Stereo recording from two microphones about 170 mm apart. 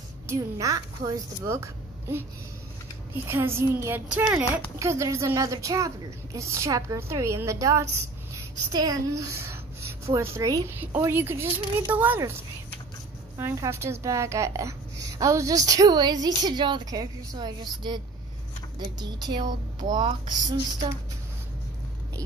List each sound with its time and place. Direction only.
0.3 s a woman's voice: 20° right (ahead or behind)
3.3 s a woman's voice: 15° right (ahead or behind)
13.4 s a woman's voice: 15° right (ahead or behind)